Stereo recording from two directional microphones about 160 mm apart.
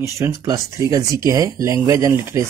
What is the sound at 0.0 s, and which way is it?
Speech, 20° right (ahead or behind).